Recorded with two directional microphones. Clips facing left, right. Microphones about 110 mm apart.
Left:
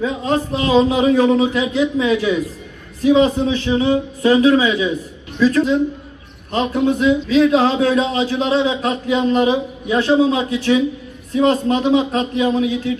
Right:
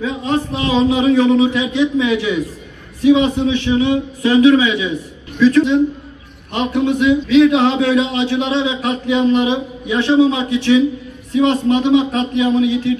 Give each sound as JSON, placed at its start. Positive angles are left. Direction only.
{"t": 0.0, "sound": "a man's voice", "side_deg": 40}